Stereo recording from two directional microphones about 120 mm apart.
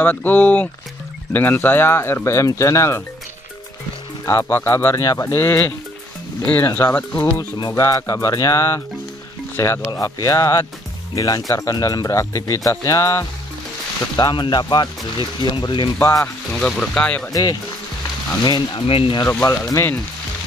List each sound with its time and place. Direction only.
0.0 s speech: 15° left (ahead or behind)
4.3 s speech: 20° left (ahead or behind)
7.5 s speech: 30° left (ahead or behind)
9.8 s speech: 30° left (ahead or behind)
14.1 s speech: 40° left (ahead or behind)
16.0 s speech: 30° left (ahead or behind)
16.5 s speech: 5° left (ahead or behind)
17.3 s speech: 30° left (ahead or behind)
18.9 s speech: 50° left (ahead or behind)
19.4 s speech: 25° left (ahead or behind)